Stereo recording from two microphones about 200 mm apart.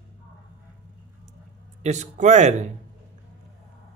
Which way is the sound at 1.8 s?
35° right (ahead or behind).